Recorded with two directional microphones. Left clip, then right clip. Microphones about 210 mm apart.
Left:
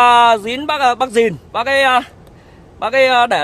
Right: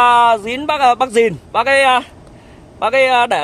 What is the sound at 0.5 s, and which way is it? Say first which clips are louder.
A man's voice: right 2 dB; 5° left (ahead or behind).